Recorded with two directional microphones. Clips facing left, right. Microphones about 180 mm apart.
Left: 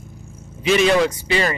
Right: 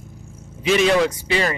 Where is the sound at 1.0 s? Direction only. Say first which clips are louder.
Left 1 dB; 25° left (ahead or behind).